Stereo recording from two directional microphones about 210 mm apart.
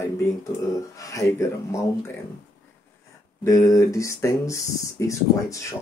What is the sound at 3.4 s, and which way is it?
Speech, 15° left (ahead or behind).